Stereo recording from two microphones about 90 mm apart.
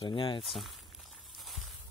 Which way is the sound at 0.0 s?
65° left (ahead or behind).